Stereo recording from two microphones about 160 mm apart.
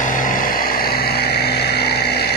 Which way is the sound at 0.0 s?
55° left (ahead or behind).